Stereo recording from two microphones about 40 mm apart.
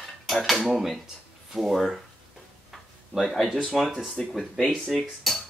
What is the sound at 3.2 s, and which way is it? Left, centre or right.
Speech, centre.